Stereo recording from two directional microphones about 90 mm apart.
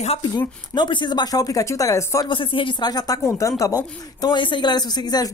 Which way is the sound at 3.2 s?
35° left (ahead or behind).